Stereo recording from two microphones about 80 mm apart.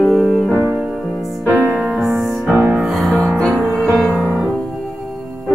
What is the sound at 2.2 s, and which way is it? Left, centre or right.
Music, centre.